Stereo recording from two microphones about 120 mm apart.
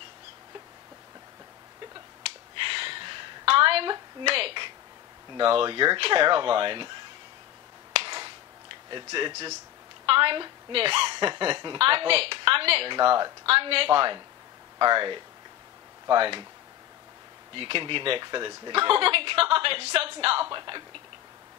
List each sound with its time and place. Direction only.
2.6 s a sound: 45° right (ahead or behind)
5.4 s speech: 50° right (ahead or behind)
7.9 s finger snapping: 45° right (ahead or behind)
8.9 s a woman's voice: 40° right (ahead or behind)
17.6 s speech: 45° right (ahead or behind)